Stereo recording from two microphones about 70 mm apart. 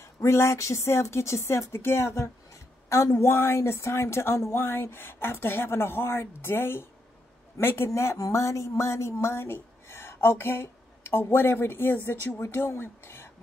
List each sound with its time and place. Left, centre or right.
0.0 s speech: left